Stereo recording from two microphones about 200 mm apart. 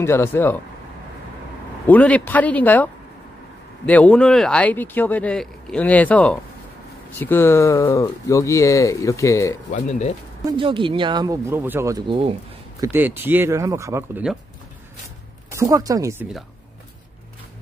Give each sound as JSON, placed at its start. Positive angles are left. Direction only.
{"t": 0.0, "sound": "speech", "side_deg": 10}
{"t": 1.9, "sound": "speech", "side_deg": 5}
{"t": 9.7, "sound": "speech", "side_deg": 35}
{"t": 10.4, "sound": "speech", "side_deg": -25}
{"t": 15.5, "sound": "speech", "side_deg": -15}